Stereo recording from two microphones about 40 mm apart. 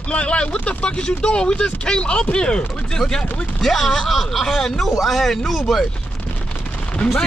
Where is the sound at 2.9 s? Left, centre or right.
Centre.